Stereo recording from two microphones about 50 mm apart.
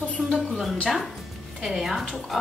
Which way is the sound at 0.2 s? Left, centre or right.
Centre.